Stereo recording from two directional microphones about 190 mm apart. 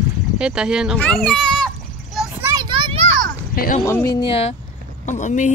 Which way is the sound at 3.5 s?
50° left (ahead or behind).